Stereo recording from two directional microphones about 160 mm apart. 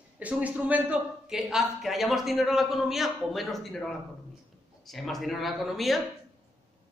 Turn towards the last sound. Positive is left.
turn(degrees=0)  # may be behind; listen again after turning